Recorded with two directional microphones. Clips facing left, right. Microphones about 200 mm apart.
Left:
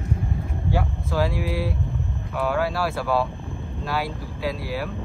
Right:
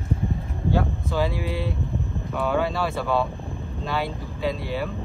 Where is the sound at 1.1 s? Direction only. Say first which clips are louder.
Left 3 dB; centre (ahead or behind).